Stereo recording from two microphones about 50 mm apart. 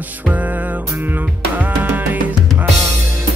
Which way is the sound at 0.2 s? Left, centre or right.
Right.